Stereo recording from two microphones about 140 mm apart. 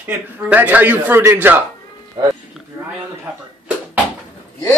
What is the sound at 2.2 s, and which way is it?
Speech, 30° right (ahead or behind).